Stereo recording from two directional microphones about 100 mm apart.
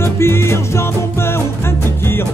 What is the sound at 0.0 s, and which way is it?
Music, 25° left (ahead or behind).